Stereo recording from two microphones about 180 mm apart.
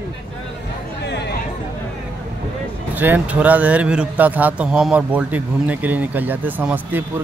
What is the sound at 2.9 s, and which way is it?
Speech, 10° right (ahead or behind).